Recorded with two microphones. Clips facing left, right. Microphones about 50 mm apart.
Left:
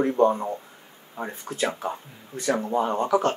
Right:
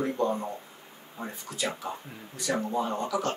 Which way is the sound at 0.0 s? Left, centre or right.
Left.